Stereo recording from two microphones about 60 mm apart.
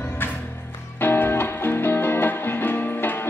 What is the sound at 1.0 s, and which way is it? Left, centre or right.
Music, left.